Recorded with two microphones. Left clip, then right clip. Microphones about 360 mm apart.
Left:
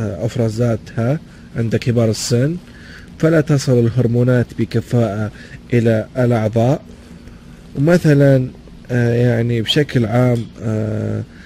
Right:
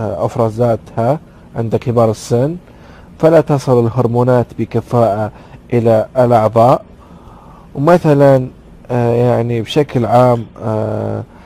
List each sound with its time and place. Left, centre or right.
0.0 s speech: right
3.2 s speech: right
7.8 s speech: right
9.5 s speech: centre
9.9 s speech: right